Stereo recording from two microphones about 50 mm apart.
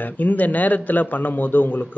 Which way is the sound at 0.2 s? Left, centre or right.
Left.